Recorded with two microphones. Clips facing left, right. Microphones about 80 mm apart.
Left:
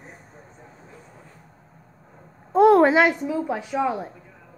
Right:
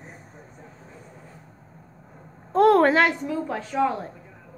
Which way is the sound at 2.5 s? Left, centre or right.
Centre.